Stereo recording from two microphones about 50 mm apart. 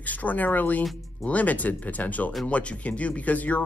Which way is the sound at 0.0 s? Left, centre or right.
Left.